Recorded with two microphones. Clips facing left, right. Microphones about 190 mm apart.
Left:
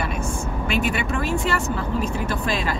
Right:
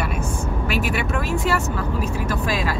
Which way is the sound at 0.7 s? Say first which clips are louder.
Left 1 dB; 5° right (ahead or behind).